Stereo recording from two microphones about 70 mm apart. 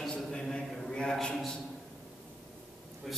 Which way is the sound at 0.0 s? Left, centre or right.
Centre.